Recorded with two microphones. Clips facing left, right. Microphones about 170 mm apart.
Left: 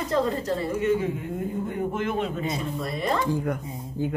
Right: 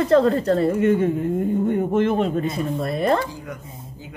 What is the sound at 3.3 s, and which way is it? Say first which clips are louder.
Speech: left 8 dB; 55° left (ahead or behind).